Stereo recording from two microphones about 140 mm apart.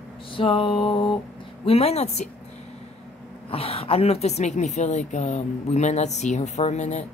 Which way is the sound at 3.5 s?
45° left (ahead or behind).